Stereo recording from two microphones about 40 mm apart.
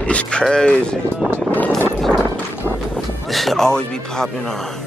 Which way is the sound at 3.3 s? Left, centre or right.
Centre.